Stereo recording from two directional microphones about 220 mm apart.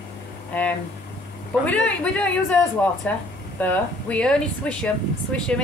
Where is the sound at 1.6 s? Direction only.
5° left (ahead or behind).